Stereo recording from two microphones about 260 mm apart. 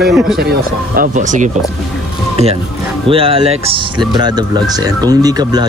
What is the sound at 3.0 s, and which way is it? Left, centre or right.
Speech, right.